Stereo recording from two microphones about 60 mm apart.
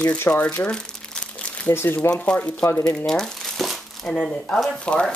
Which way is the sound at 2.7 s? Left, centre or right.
Left.